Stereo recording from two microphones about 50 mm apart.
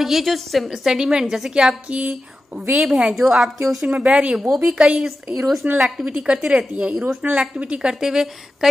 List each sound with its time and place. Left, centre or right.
0.0 s a woman's voice: centre
0.7 s a woman's voice: centre
2.0 s speech: right
2.7 s a woman's voice: centre
3.8 s a woman's voice: right; by 5.7 s centre
6.0 s a woman's voice: right
7.9 s a woman's voice: centre